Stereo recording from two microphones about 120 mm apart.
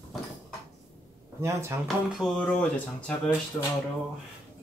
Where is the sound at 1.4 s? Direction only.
25° right (ahead or behind).